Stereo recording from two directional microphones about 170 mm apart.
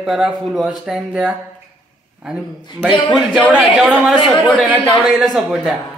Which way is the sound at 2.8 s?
Centre (ahead or behind).